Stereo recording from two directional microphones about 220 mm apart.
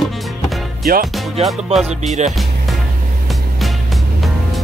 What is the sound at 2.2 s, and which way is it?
Speech, 30° right (ahead or behind).